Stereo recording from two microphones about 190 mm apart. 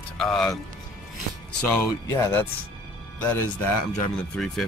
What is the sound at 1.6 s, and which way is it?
Speech, 10° left (ahead or behind).